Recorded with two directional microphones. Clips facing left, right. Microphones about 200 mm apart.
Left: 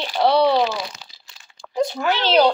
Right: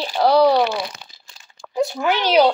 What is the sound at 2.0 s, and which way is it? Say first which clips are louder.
Speech: right 1 dB; 15° right (ahead or behind).